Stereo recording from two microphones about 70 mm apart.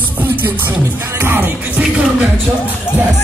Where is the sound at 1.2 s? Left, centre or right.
Right.